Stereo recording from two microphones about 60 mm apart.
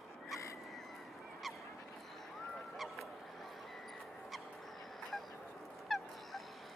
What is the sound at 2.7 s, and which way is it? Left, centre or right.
Honk, centre.